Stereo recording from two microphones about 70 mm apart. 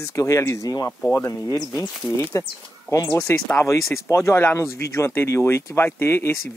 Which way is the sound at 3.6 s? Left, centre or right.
Left.